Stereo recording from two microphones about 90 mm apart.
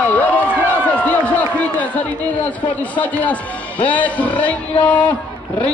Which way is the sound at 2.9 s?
15° left (ahead or behind).